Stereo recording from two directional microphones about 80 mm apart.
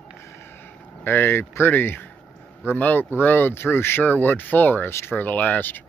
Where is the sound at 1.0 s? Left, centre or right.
Left.